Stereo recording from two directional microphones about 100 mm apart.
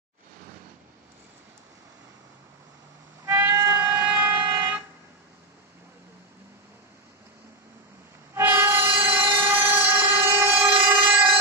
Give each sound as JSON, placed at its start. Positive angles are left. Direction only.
{"t": 3.3, "sound": "train", "side_deg": -30}
{"t": 8.4, "sound": "train", "side_deg": -20}